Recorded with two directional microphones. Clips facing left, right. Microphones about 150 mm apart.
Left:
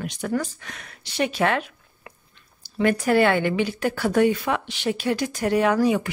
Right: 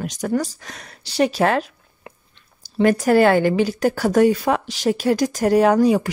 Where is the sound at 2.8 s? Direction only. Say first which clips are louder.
Right 4 dB; 40° right (ahead or behind).